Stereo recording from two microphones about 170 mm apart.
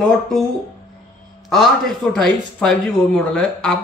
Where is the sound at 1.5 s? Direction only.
Centre (ahead or behind).